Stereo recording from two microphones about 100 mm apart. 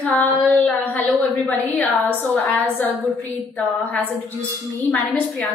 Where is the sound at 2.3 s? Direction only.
15° left (ahead or behind).